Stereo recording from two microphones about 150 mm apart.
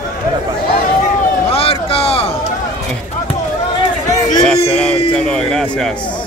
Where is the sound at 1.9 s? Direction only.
40° left (ahead or behind).